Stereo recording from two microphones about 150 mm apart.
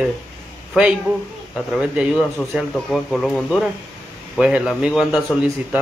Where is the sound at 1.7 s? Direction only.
5° right (ahead or behind).